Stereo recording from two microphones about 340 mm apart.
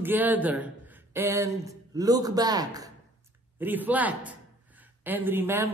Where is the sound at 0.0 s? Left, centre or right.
Centre.